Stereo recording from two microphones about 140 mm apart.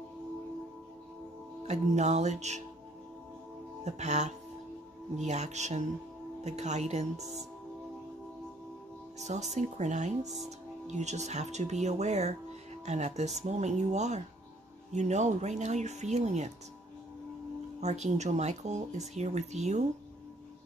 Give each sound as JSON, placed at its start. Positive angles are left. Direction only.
{"t": 1.7, "sound": "speech", "side_deg": -55}
{"t": 3.8, "sound": "speech", "side_deg": -55}
{"t": 9.2, "sound": "speech", "side_deg": -55}
{"t": 17.7, "sound": "speech", "side_deg": -55}